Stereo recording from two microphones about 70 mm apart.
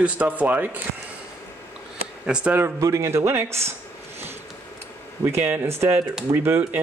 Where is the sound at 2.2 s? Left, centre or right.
Centre.